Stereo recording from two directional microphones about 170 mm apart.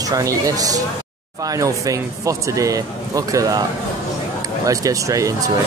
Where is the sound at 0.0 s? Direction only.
20° right (ahead or behind).